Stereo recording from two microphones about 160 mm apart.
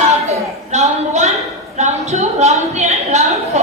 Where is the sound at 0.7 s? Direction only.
45° right (ahead or behind).